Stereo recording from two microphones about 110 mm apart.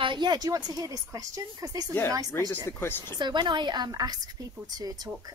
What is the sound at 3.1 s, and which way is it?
A woman's voice, 45° right (ahead or behind).